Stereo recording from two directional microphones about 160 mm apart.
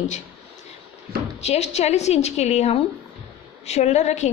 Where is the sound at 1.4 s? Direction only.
40° left (ahead or behind).